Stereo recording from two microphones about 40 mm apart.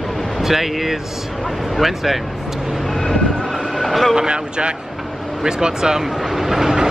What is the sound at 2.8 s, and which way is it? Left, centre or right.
Train, centre.